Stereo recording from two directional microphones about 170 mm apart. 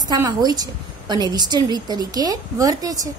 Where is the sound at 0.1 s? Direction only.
20° right (ahead or behind).